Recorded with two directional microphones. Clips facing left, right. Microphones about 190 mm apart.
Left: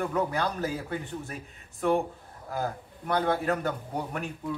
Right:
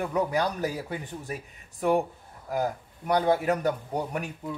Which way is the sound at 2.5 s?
15° right (ahead or behind).